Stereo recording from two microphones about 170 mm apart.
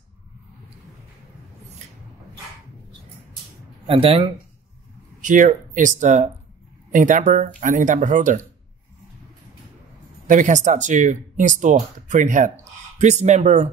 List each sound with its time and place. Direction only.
3.8 s speech: 35° right (ahead or behind)
5.2 s speech: 50° right (ahead or behind)
10.2 s speech: 50° right (ahead or behind)